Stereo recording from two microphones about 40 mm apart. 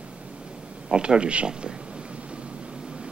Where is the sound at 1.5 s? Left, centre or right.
Right.